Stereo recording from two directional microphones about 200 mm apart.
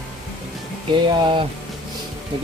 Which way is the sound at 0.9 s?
25° right (ahead or behind).